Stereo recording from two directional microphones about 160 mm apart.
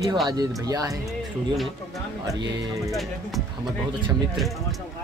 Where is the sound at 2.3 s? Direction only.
20° right (ahead or behind).